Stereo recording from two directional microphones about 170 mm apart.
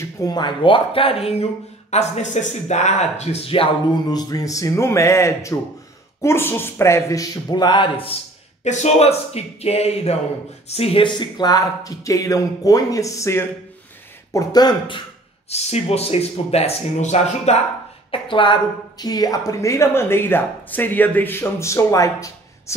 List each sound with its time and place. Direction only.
0.0 s a woman's voice: 20° left (ahead or behind)
8.6 s speech: 40° left (ahead or behind); by 15.0 s 25° left (ahead or behind)
15.5 s speech: 40° left (ahead or behind)
18.1 s a woman's voice: 30° left (ahead or behind)